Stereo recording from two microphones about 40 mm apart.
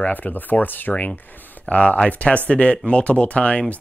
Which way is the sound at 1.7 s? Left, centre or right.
Left.